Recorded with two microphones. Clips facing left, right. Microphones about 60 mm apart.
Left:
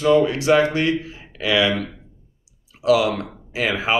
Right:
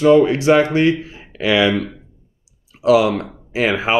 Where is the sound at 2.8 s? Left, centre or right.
Right.